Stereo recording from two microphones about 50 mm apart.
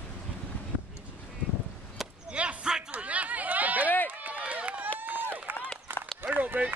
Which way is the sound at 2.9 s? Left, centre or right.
Right.